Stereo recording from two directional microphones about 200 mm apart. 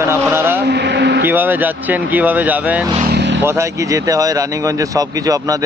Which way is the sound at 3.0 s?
60° right (ahead or behind).